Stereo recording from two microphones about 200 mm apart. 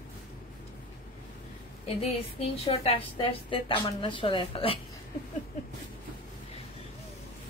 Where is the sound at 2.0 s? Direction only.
30° left (ahead or behind).